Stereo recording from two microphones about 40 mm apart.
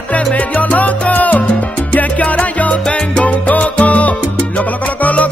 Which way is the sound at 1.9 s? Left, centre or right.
Left.